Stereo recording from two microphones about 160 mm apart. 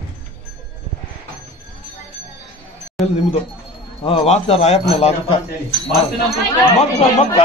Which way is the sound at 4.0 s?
35° left (ahead or behind).